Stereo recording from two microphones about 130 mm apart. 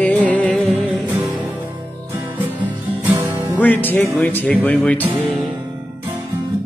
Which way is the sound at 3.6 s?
15° left (ahead or behind).